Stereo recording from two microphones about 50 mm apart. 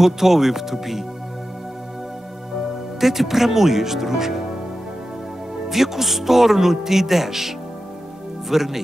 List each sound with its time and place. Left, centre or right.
0.0 s speech: centre
3.0 s speech: centre
5.6 s speech: centre